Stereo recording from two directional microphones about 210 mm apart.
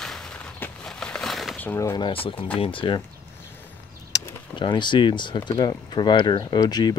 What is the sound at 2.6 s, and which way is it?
Speech, 25° left (ahead or behind).